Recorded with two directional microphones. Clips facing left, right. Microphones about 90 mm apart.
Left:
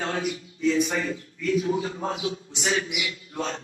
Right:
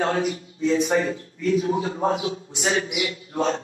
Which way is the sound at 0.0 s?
40° right (ahead or behind).